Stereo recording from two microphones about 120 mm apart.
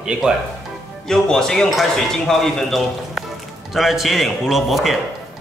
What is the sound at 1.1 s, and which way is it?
Speech, 5° left (ahead or behind).